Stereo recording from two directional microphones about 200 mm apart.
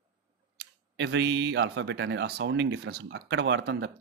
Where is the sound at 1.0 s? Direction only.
60° right (ahead or behind).